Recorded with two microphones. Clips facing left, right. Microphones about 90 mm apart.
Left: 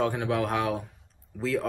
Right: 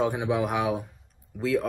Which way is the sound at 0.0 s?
15° right (ahead or behind).